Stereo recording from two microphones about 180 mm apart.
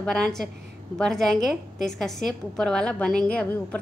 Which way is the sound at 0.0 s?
5° left (ahead or behind).